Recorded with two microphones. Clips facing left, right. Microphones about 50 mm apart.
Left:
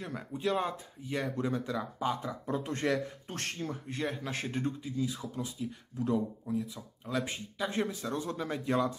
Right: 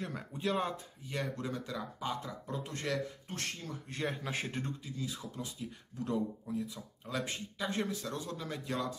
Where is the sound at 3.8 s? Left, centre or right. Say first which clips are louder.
Right 1 dB; centre.